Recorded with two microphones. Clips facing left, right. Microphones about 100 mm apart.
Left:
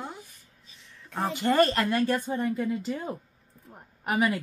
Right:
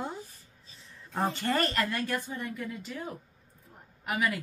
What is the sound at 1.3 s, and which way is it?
Speech, 20° left (ahead or behind).